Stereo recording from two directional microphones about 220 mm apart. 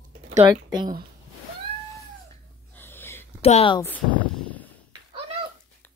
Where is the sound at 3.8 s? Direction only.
5° left (ahead or behind).